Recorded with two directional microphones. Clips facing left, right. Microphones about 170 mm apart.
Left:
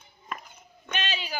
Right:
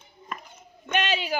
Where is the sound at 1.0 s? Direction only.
60° right (ahead or behind).